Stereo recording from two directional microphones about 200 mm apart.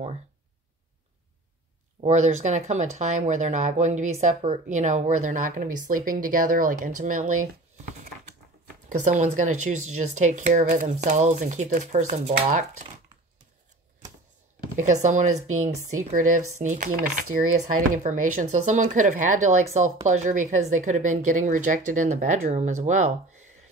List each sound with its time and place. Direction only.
2.0 s speech: 35° right (ahead or behind)
8.8 s speech: 40° right (ahead or behind)
14.8 s speech: 35° right (ahead or behind)